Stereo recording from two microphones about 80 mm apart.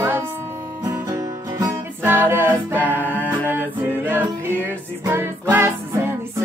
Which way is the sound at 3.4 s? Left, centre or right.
Right.